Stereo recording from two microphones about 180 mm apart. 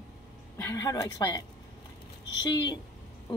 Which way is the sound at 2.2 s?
90° left.